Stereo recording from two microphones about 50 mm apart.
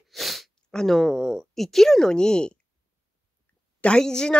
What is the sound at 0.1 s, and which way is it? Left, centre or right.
Sniff, centre.